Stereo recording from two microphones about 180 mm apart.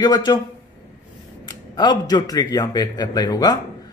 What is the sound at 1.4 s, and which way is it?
Speech, 25° left (ahead or behind).